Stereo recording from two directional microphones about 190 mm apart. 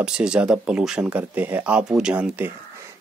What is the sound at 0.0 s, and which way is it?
Speech, 5° right (ahead or behind).